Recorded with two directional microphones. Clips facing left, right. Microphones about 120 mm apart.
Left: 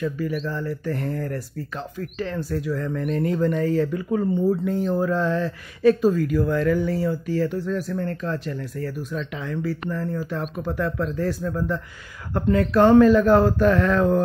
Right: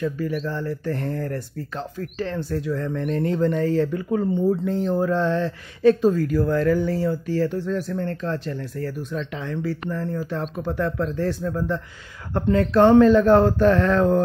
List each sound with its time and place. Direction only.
0.0 s speech: 35° right (ahead or behind)